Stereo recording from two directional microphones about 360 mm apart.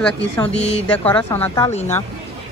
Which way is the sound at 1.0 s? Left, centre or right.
Centre.